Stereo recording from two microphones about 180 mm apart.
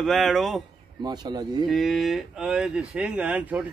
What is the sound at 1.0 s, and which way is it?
Speech, 25° right (ahead or behind).